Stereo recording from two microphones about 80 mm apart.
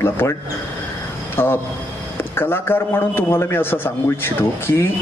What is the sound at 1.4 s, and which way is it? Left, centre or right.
A man's voice, left.